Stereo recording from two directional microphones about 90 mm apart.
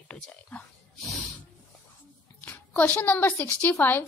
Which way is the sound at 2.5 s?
20° left (ahead or behind).